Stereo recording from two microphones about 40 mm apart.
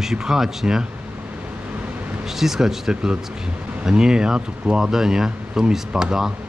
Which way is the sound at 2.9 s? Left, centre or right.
Right.